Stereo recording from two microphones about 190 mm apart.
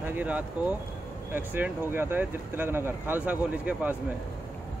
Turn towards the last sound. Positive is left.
turn(degrees=-10)  # may be behind; listen again after turning